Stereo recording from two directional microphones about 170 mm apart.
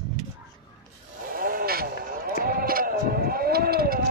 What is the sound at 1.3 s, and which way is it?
Vehicle, 60° right (ahead or behind).